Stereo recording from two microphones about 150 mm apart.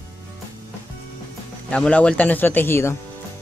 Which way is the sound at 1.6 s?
5° left (ahead or behind).